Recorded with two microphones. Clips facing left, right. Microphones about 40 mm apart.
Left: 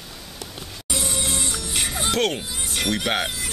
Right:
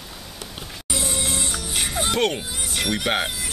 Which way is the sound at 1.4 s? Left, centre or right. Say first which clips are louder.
Even; centre.